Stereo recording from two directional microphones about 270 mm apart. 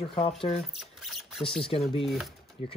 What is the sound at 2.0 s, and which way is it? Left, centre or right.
Speech, centre.